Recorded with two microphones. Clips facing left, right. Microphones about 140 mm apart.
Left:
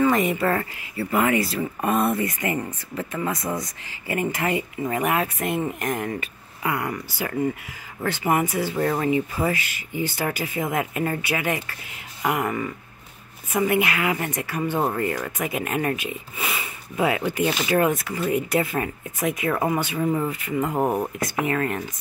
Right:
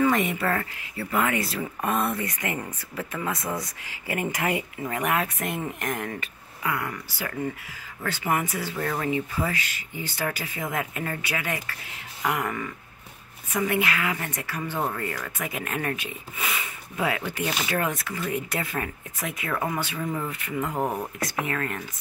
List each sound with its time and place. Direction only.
0.0 s speech: centre (ahead or behind)
4.8 s speech: 5° left (ahead or behind)
6.6 s speech: 25° left (ahead or behind)
16.3 s speech: 5° left (ahead or behind)
16.9 s speech: 15° left (ahead or behind)
19.5 s speech: 30° left (ahead or behind)
20.2 s speech: 5° left (ahead or behind)
20.7 s speech: 25° left (ahead or behind)